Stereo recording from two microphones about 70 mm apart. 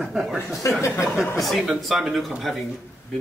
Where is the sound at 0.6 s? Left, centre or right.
Left.